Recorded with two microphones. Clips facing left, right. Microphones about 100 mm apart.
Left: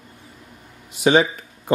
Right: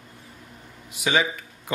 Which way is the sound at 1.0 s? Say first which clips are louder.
Left 7 dB; 35° left (ahead or behind).